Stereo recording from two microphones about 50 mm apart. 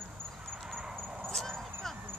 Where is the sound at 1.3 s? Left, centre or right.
Centre.